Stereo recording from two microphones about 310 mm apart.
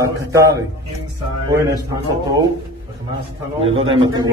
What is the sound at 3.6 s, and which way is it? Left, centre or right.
Speech, centre.